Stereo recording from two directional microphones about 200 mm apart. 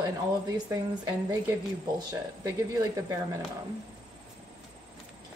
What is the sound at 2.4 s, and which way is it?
Speech, 15° right (ahead or behind).